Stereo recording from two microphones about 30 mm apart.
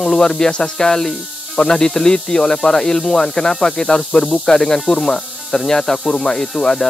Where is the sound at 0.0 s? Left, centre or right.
Centre.